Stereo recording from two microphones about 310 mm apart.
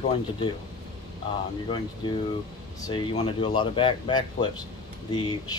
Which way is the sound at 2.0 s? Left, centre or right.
Centre.